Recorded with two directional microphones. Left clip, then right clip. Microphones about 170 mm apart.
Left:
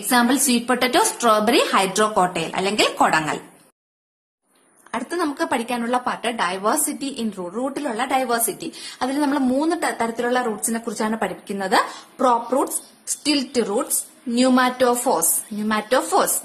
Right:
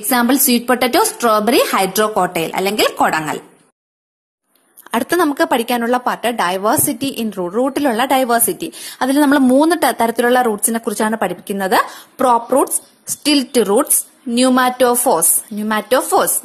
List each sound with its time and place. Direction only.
0.0 s a woman's voice: 35° right (ahead or behind)
4.8 s a woman's voice: 50° right (ahead or behind)
5.5 s a woman's voice: 35° right (ahead or behind)